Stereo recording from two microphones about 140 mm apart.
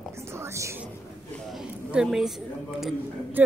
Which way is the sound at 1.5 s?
5° right (ahead or behind).